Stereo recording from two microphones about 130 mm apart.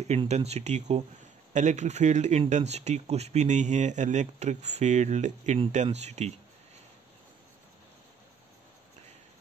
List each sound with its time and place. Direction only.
0.3 s speech: 55° right (ahead or behind)